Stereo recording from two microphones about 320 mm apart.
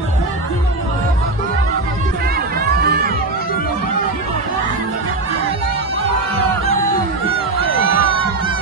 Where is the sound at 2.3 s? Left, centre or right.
Right.